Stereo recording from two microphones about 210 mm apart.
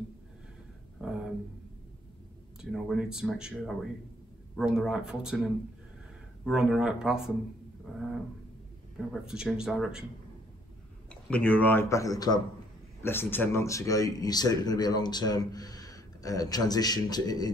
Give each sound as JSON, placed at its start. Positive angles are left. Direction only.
{"t": 1.0, "sound": "a sound", "side_deg": -5}
{"t": 2.6, "sound": "speech", "side_deg": 0}
{"t": 8.9, "sound": "speech", "side_deg": 0}
{"t": 11.2, "sound": "speech", "side_deg": 5}